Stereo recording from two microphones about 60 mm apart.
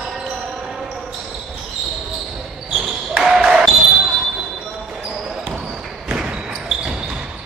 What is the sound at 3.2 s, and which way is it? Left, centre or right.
Basketball bounce, centre.